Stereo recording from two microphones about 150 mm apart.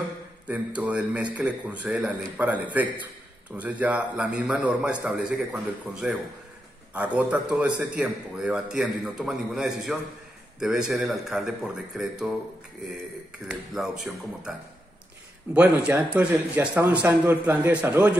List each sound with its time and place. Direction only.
0.5 s a man's voice: 10° right (ahead or behind)
13.5 s a man's voice: 5° right (ahead or behind)
15.5 s a man's voice: 10° right (ahead or behind)